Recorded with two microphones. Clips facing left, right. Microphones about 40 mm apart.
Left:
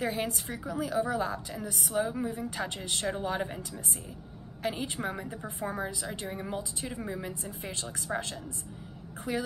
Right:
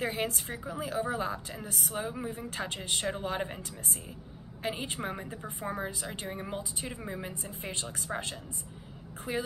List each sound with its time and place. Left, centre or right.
0.5 s a woman's voice: right
4.6 s a woman's voice: centre